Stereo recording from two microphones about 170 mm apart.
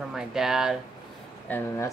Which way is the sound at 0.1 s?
5° right (ahead or behind).